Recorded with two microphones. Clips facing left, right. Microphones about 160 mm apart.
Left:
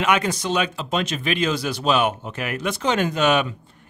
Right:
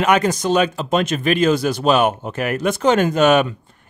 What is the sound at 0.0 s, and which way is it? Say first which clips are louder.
Speech: right 5 dB; 45° right (ahead or behind).